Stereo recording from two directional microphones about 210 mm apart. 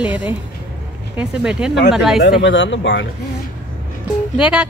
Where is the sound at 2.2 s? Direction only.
50° left (ahead or behind).